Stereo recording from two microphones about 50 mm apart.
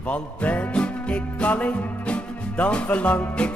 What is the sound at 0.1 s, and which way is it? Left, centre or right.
Music, left.